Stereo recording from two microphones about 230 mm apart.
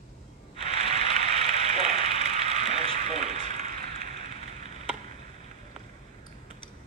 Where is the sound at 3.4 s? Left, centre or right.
Right.